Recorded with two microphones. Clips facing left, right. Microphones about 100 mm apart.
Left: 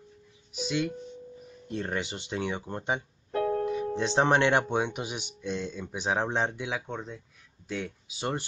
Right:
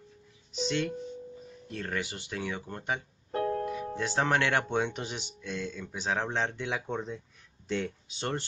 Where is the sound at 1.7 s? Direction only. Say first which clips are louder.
Left 3 dB; 20° left (ahead or behind).